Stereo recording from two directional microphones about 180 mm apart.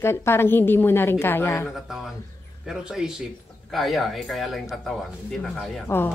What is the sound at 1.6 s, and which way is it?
Speech, centre (ahead or behind).